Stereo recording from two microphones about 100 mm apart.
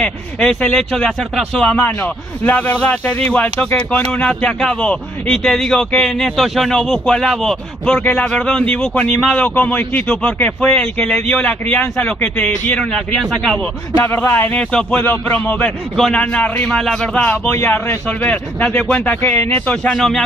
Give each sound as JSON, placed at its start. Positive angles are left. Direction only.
{"t": 0.4, "sound": "speech", "side_deg": 5}
{"t": 9.4, "sound": "speech", "side_deg": 15}
{"t": 13.9, "sound": "speech", "side_deg": 25}
{"t": 15.0, "sound": "speech", "side_deg": 20}